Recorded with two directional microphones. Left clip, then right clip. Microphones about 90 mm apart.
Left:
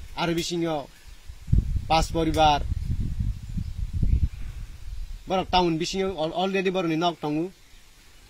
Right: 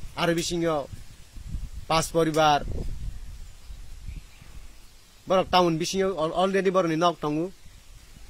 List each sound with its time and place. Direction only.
0.1 s a man's voice: 30° right (ahead or behind)
1.9 s a man's voice: 35° right (ahead or behind)
5.3 s a man's voice: 35° right (ahead or behind)